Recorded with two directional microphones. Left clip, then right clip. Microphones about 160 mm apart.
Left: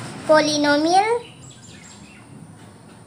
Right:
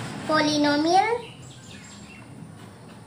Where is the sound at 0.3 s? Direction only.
40° left (ahead or behind).